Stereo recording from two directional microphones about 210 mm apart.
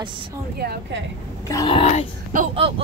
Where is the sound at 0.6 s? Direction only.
50° right (ahead or behind).